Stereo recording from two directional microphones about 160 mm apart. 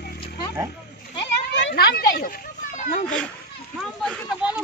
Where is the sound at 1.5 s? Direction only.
80° left.